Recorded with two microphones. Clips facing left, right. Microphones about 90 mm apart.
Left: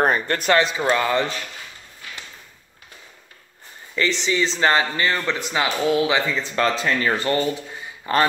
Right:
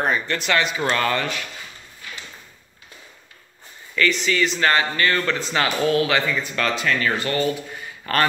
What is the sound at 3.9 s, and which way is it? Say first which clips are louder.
Speech: right 1 dB; 25° left (ahead or behind).